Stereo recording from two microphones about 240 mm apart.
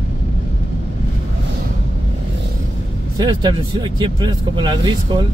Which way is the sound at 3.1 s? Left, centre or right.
Centre.